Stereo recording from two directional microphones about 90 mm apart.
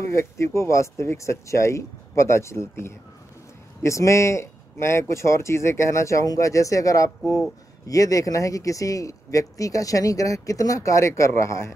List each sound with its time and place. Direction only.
0.1 s speech: 30° left (ahead or behind)